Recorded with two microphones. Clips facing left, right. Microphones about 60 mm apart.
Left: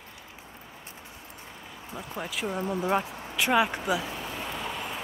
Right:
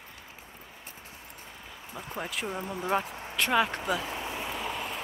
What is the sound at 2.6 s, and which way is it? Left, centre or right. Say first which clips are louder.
Speech: left 5 dB; centre.